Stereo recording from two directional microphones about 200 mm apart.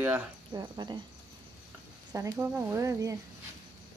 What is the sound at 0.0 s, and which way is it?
Speech, 15° right (ahead or behind).